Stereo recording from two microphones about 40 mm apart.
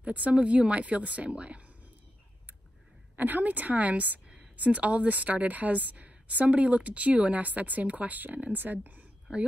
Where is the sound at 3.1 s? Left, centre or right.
Right.